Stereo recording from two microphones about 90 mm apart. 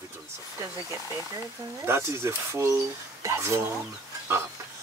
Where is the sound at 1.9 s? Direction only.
30° right (ahead or behind).